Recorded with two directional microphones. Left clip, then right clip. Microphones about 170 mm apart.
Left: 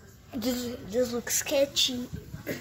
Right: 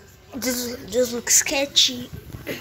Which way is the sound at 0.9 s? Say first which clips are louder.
Right 7 dB; 10° left (ahead or behind).